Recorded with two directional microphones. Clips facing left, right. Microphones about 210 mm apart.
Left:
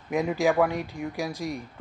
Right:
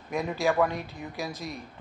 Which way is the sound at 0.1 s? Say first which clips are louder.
Left 3 dB; 15° left (ahead or behind).